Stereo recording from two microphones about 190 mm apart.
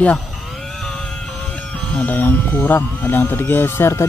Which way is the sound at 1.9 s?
10° left (ahead or behind).